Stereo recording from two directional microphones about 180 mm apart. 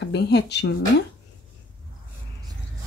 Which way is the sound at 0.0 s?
70° left (ahead or behind).